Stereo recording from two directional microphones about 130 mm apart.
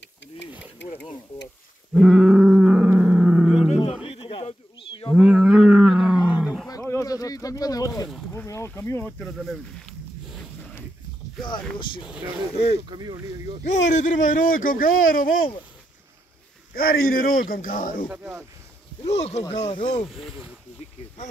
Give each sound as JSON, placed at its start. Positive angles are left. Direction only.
{"t": 2.0, "sound": "roaring cats", "side_deg": 0}
{"t": 4.1, "sound": "a sound", "side_deg": 45}
{"t": 5.1, "sound": "roaring cats", "side_deg": -5}
{"t": 6.9, "sound": "a sound", "side_deg": 25}
{"t": 9.2, "sound": "a sound", "side_deg": 0}
{"t": 11.8, "sound": "speech", "side_deg": 40}
{"t": 12.4, "sound": "speech", "side_deg": 50}
{"t": 12.8, "sound": "a sound", "side_deg": -30}
{"t": 13.7, "sound": "a man's voice", "side_deg": 65}
{"t": 17.0, "sound": "a man's voice", "side_deg": 90}
{"t": 18.0, "sound": "speech", "side_deg": -10}
{"t": 19.0, "sound": "speech", "side_deg": 55}
{"t": 20.1, "sound": "speech", "side_deg": 0}